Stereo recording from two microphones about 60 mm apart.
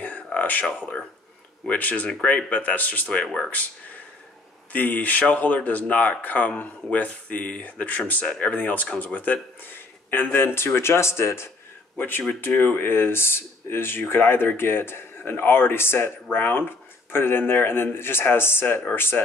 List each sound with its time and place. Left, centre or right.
0.0 s a sound: left
1.7 s speech: left
4.7 s speech: left
12.0 s speech: left